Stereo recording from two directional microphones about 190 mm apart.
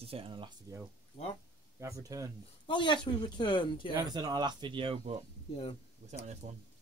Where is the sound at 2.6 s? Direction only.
25° left (ahead or behind).